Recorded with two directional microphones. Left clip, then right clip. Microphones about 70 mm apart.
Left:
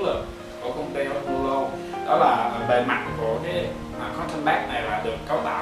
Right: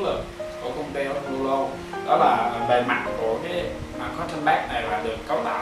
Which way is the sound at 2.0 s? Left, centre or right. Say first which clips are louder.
Even; centre.